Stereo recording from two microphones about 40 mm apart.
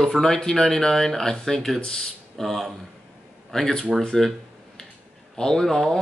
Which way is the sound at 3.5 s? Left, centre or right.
Centre.